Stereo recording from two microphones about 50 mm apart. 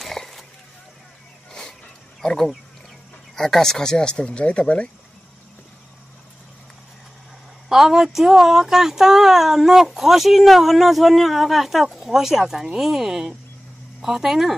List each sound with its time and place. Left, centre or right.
0.0 s a sound: centre
2.2 s speech: centre; by 4.8 s left
7.7 s speech: centre